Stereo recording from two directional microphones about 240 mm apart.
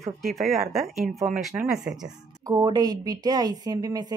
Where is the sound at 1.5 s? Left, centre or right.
Centre.